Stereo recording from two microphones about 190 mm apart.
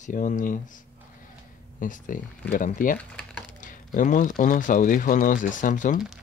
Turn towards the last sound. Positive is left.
turn(degrees=40)  # may be behind; listen again after turning